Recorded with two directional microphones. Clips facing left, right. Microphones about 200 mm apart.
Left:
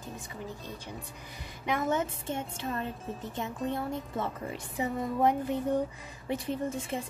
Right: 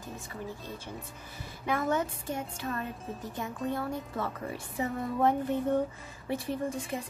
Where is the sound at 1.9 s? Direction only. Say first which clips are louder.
Even; 25° left (ahead or behind).